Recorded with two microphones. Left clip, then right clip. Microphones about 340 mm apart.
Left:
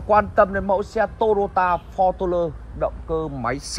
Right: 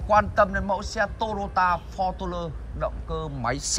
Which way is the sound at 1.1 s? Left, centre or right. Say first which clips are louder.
Left 9 dB; centre.